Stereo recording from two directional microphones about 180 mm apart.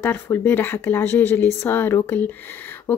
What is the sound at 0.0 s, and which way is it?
Speech, 10° left (ahead or behind).